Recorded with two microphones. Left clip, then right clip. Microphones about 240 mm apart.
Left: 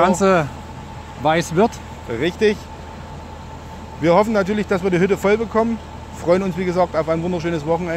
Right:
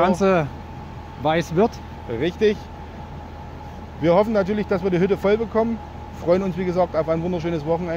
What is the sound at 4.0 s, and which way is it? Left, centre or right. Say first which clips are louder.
Speech: left 2 dB; centre.